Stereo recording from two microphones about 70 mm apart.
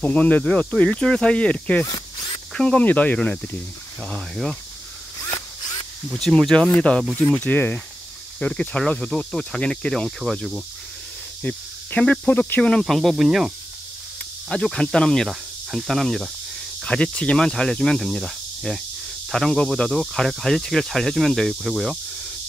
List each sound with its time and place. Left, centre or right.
0.0 s speech: centre
1.9 s a sound: left
2.5 s speech: centre
6.1 s speech: centre
7.2 s speech: left; by 10.6 s centre
11.4 s speech: centre
12.8 s speech: centre
14.5 s speech: centre
16.8 s speech: centre